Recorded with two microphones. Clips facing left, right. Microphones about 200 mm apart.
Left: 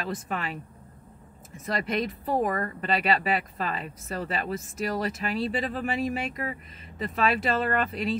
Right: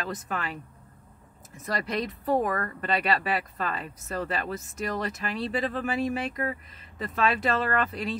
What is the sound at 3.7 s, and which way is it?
Speech, centre (ahead or behind).